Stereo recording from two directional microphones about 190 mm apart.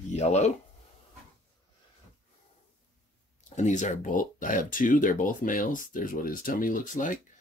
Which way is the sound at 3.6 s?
40° left (ahead or behind).